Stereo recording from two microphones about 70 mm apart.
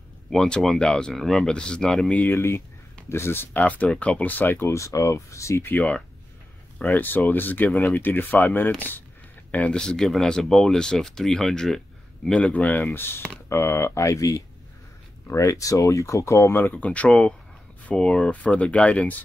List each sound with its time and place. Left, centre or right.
0.3 s speech: centre
2.3 s speech: left
3.5 s speech: left
5.6 s speech: left
9.5 s speech: centre
12.5 s speech: left
12.9 s speech: left